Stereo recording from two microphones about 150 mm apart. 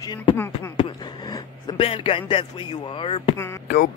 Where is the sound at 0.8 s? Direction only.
30° left (ahead or behind).